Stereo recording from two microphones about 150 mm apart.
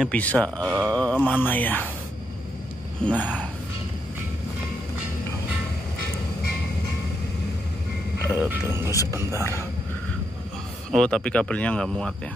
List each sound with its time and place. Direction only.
0.1 s mantra: 10° left (ahead or behind)
3.0 s mantra: 10° left (ahead or behind)
8.3 s speech: 15° right (ahead or behind)
9.4 s mantra: 20° left (ahead or behind)
10.9 s speech: 5° left (ahead or behind)